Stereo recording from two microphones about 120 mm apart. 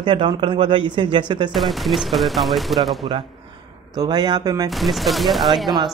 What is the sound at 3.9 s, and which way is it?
Speech, 35° right (ahead or behind).